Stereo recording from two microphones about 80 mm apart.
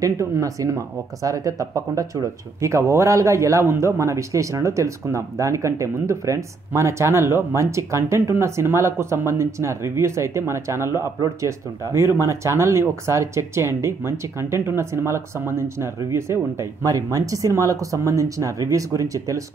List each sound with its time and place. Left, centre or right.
0.0 s speech: right